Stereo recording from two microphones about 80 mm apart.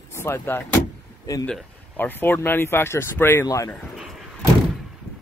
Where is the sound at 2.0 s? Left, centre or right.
Left.